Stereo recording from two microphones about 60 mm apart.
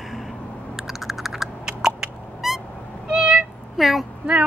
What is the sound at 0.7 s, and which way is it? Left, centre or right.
Typing, centre.